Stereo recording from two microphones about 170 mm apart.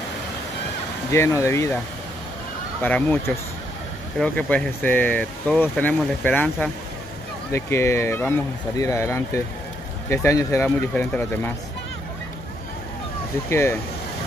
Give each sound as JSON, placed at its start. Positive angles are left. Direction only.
{"t": 1.1, "sound": "speech", "side_deg": 15}
{"t": 2.8, "sound": "speech", "side_deg": 10}
{"t": 13.5, "sound": "speech", "side_deg": 15}